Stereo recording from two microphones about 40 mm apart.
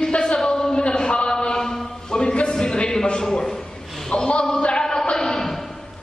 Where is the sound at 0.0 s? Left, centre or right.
Centre.